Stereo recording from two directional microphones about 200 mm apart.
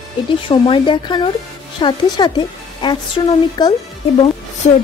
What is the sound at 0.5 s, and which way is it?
A woman's voice, 25° left (ahead or behind).